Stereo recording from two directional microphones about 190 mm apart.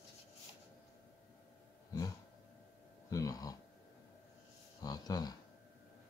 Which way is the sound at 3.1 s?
20° left (ahead or behind).